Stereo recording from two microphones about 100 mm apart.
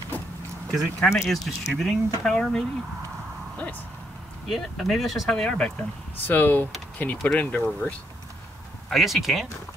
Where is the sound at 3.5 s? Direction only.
15° left (ahead or behind).